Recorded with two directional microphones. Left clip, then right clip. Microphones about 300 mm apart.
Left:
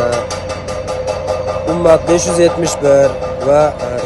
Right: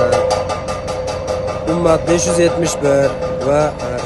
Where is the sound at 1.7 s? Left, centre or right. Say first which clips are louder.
Left 4 dB; centre.